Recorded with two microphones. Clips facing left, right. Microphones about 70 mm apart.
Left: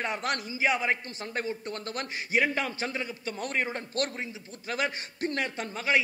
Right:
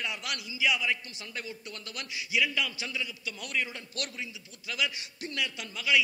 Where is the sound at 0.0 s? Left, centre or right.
Left.